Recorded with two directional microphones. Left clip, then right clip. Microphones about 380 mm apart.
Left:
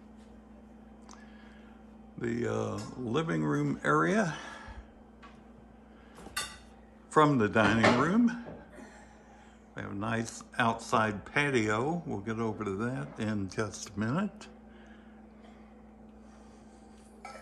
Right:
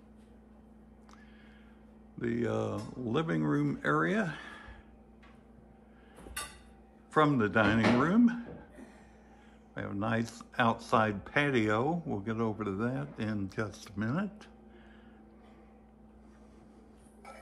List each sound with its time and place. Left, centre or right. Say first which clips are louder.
2.1 s speech: even; centre
7.1 s speech: left 2 dB; centre
9.8 s speech: right 1 dB; centre